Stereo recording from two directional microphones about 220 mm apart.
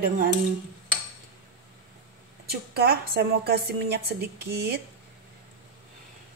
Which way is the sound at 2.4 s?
45° right (ahead or behind).